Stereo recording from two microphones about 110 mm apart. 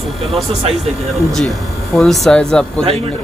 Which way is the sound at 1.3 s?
Centre (ahead or behind).